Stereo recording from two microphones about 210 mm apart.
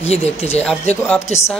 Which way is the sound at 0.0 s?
30° left (ahead or behind).